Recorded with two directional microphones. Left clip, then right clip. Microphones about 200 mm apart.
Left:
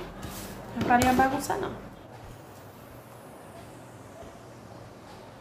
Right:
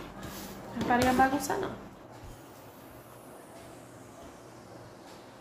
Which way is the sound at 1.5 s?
15° right (ahead or behind).